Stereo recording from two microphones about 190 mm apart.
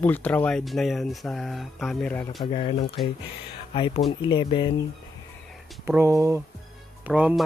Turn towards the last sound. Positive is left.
turn(degrees=-5)  # may be behind; listen again after turning